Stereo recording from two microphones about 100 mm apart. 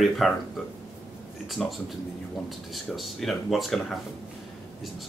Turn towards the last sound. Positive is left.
turn(degrees=0)  # may be behind; listen again after turning